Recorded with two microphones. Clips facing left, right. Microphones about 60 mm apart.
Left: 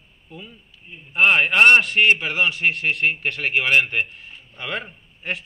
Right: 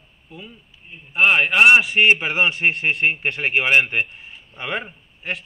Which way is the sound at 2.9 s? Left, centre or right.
Centre.